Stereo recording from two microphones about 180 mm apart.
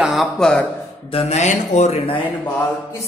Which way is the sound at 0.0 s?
Centre (ahead or behind).